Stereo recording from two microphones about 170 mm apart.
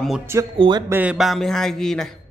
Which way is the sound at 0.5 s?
30° right (ahead or behind).